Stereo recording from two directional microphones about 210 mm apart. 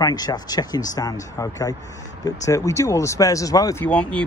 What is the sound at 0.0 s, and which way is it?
Speech, 20° left (ahead or behind).